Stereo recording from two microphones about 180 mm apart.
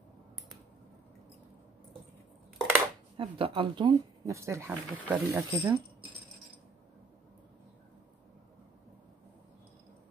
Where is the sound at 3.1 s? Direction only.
30° right (ahead or behind).